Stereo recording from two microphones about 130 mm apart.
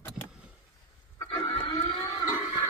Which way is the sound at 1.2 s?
30° left (ahead or behind).